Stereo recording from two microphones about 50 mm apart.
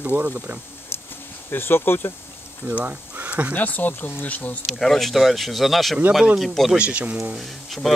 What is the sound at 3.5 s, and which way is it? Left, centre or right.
Speech, left.